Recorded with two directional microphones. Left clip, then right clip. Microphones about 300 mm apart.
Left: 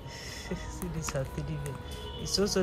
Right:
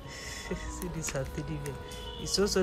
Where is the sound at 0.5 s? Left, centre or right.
Centre.